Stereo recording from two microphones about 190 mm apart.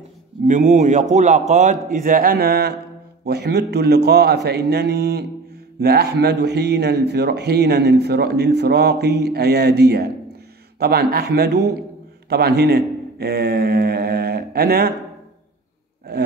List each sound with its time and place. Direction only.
0.5 s a man's voice: 40° right (ahead or behind)